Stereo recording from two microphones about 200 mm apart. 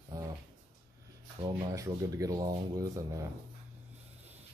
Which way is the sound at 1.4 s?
20° right (ahead or behind).